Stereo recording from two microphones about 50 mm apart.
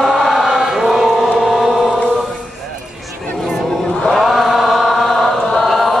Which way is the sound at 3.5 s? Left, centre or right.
Centre.